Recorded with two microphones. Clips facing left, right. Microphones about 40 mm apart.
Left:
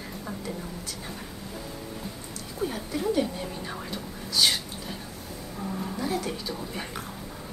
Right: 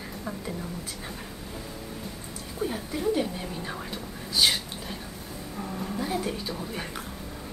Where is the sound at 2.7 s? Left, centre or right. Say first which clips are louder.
Right 1 dB; centre.